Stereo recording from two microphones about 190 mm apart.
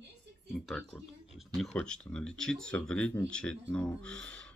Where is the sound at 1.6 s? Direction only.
5° left (ahead or behind).